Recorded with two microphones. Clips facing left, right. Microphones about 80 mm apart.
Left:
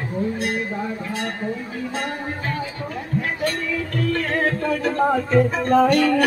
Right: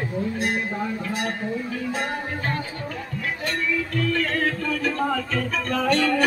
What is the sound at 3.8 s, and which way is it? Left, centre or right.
Music, left.